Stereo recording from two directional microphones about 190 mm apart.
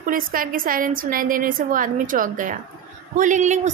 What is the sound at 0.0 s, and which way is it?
A woman's voice, 45° right (ahead or behind).